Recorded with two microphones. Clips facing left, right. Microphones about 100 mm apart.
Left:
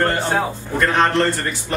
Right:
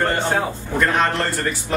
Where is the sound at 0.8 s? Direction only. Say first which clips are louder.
Left 3 dB; centre (ahead or behind).